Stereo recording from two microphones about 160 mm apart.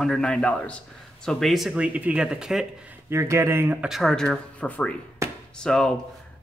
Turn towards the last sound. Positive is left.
turn(degrees=5)  # may be behind; listen again after turning